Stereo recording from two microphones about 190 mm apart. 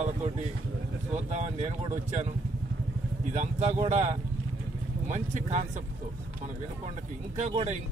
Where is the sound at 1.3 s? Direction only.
35° right (ahead or behind).